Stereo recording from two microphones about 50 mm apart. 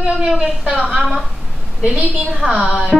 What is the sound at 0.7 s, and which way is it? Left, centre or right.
Speech, right.